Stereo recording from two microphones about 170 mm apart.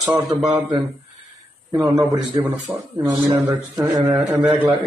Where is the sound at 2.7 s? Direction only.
10° right (ahead or behind).